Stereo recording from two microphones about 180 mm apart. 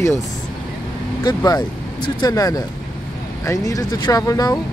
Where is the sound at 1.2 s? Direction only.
20° left (ahead or behind).